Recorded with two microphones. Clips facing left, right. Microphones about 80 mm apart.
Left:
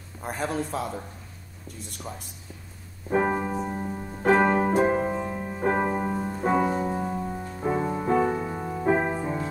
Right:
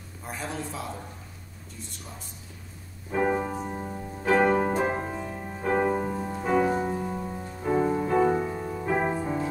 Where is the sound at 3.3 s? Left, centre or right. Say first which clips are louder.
Left 1 dB; left.